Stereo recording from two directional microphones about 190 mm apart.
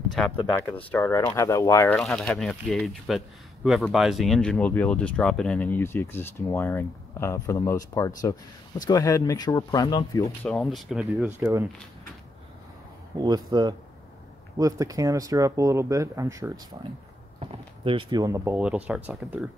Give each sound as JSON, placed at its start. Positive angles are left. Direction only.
{"t": 0.9, "sound": "speech", "side_deg": 10}
{"t": 2.0, "sound": "speech", "side_deg": 5}
{"t": 10.4, "sound": "speech", "side_deg": 0}
{"t": 13.2, "sound": "speech", "side_deg": -20}
{"t": 17.4, "sound": "speech", "side_deg": -30}